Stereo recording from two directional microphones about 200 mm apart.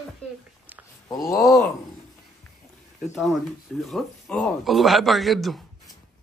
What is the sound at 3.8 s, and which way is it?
A man's voice, centre (ahead or behind).